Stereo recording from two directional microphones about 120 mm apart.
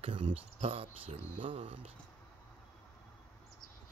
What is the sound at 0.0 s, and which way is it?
Speech, 45° right (ahead or behind).